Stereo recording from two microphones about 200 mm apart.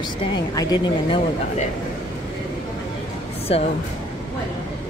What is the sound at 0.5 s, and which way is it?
Speech, 20° left (ahead or behind).